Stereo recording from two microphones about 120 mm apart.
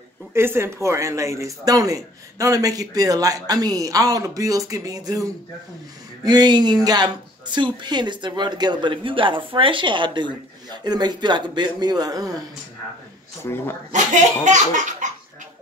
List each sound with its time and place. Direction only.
0.3 s a man's voice: 20° right (ahead or behind)
6.2 s speech: 35° right (ahead or behind)
13.4 s speech: 20° left (ahead or behind)
13.9 s laughter: 90° right